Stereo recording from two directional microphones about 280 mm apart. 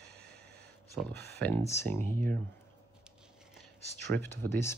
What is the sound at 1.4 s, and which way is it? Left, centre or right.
Speech, centre.